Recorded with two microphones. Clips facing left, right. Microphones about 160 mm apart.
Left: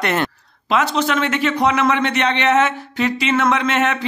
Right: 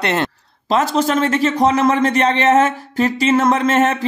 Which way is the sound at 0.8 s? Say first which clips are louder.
Right 2 dB; 40° right (ahead or behind).